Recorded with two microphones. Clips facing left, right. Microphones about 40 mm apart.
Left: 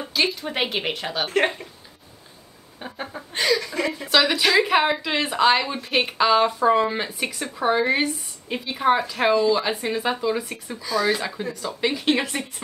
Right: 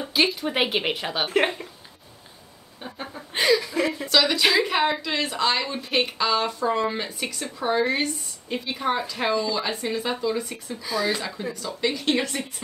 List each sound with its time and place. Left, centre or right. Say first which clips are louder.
0.0 s speech: right 1 dB; centre
2.8 s a sound: left 3 dB; centre
3.3 s chuckle: right 1 dB; centre
4.3 s speech: left 1 dB; centre
4.6 s a woman's voice: left 3 dB; centre
10.8 s speech: left 3 dB; centre
11.1 s a woman's voice: left 3 dB; centre